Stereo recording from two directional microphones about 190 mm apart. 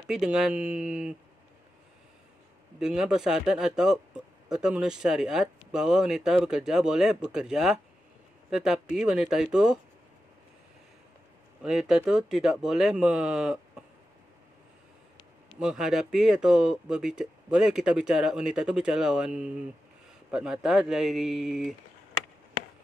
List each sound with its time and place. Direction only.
0.1 s speech: centre (ahead or behind)
2.8 s speech: 5° right (ahead or behind)
11.6 s speech: 5° right (ahead or behind)
15.6 s speech: centre (ahead or behind)